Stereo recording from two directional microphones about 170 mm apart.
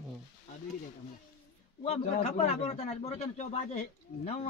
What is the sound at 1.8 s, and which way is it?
Speech, 35° left (ahead or behind).